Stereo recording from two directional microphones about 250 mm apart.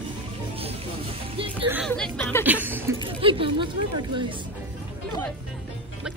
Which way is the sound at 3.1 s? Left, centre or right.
Right.